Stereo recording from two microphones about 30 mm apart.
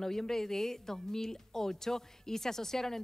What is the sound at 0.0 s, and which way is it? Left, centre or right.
Speech, centre.